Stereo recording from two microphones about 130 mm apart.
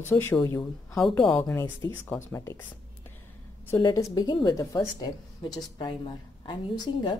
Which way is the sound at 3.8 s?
30° left (ahead or behind).